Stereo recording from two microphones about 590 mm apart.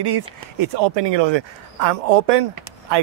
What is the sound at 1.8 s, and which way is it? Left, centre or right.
Speech, right.